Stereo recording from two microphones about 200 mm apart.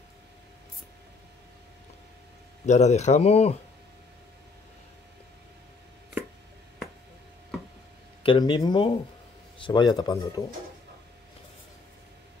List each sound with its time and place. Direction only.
2.6 s speech: 35° left (ahead or behind)
8.2 s speech: 25° left (ahead or behind)